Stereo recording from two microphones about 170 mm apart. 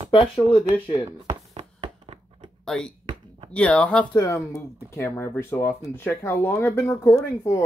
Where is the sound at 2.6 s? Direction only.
5° left (ahead or behind).